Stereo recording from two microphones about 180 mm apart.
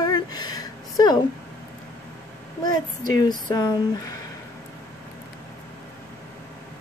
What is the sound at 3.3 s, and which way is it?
Speech, 25° left (ahead or behind).